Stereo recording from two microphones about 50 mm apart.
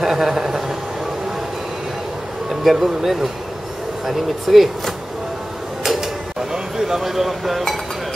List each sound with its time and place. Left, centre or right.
0.0 s a sound: centre
2.6 s speech: centre
6.5 s speech: centre